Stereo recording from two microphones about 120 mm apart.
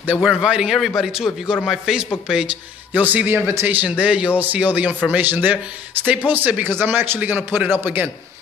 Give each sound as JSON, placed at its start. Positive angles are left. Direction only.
{"t": 0.0, "sound": "a man's voice", "side_deg": -10}